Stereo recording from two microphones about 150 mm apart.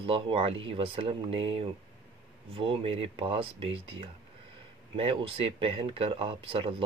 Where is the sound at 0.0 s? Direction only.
35° right (ahead or behind).